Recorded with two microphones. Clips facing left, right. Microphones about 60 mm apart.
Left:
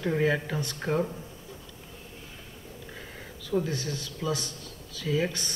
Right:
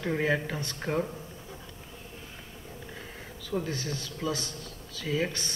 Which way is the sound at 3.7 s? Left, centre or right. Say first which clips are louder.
Left 1 dB; right.